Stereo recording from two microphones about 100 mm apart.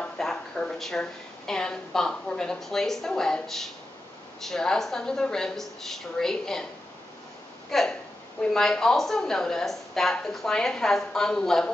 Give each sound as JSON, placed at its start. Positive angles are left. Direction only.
{"t": 0.0, "sound": "a woman's voice", "side_deg": 5}
{"t": 7.7, "sound": "a woman's voice", "side_deg": 5}